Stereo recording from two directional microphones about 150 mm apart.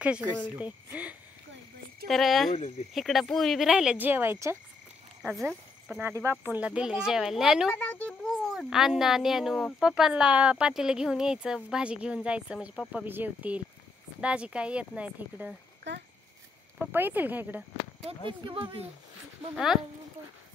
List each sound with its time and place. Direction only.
0.0 s speech: 10° right (ahead or behind)
2.0 s a child's voice: centre (ahead or behind); by 4.6 s 15° right (ahead or behind)
5.5 s speech: 5° right (ahead or behind)
6.0 s a child's voice: 20° right (ahead or behind); by 7.7 s 5° right (ahead or behind)
7.7 s a child's voice: 10° left (ahead or behind); by 15.5 s 10° right (ahead or behind)
16.7 s speech: 15° right (ahead or behind)
18.0 s speech: 35° right (ahead or behind)
19.5 s a child's voice: centre (ahead or behind)